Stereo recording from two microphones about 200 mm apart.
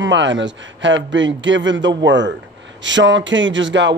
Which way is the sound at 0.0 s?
65° right (ahead or behind).